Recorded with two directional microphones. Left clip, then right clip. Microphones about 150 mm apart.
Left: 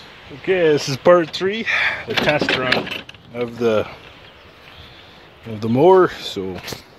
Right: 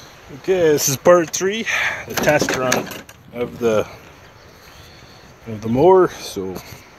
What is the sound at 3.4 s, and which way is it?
Mechanisms, 10° right (ahead or behind).